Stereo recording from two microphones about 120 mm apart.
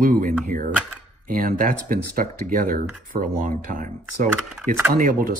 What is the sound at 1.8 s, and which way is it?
Speech, 90° right.